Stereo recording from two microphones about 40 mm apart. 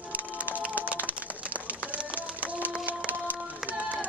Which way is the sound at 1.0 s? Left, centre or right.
Right.